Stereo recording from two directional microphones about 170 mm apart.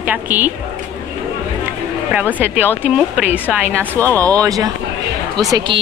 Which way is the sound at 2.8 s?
5° right (ahead or behind).